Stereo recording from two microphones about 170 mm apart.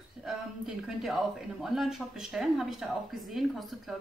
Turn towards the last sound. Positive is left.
turn(degrees=0)  # may be behind; listen again after turning